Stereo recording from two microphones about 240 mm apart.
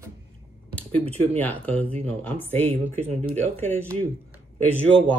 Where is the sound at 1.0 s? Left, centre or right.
Right.